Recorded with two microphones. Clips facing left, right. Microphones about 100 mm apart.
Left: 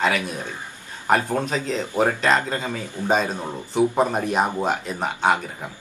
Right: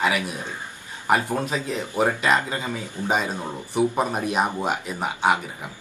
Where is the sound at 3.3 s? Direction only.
15° left (ahead or behind).